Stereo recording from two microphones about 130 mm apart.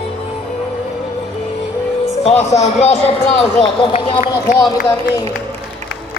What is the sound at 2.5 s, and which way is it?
Speech, 55° left (ahead or behind).